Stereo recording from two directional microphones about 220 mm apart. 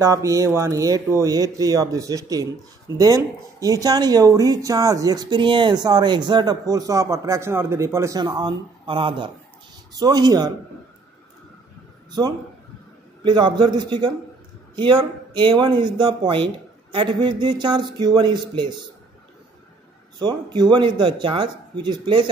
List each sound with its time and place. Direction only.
0.0 s speech: 15° right (ahead or behind)
13.2 s speech: 20° right (ahead or behind)
20.2 s speech: 20° right (ahead or behind)